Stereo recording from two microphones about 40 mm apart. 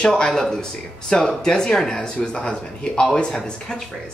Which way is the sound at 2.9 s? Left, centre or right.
Centre.